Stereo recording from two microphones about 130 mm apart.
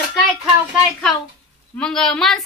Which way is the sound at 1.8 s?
5° left (ahead or behind).